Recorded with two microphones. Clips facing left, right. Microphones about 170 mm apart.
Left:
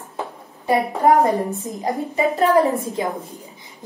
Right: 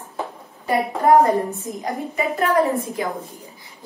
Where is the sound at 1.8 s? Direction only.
35° left (ahead or behind).